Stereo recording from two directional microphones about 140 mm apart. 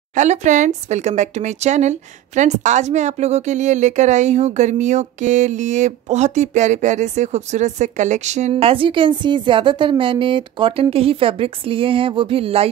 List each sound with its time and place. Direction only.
0.1 s speech: 60° right (ahead or behind); by 12.6 s 45° right (ahead or behind)